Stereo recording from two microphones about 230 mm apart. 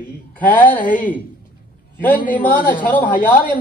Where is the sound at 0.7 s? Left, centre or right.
Left.